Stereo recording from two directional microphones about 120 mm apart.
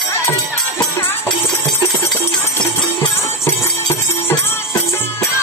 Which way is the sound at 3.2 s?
25° left (ahead or behind).